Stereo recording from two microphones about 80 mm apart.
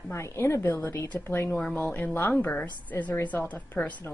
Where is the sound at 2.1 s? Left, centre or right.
Left.